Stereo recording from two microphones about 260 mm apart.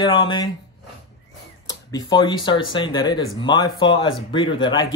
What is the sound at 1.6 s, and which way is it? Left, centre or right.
A man's voice, centre.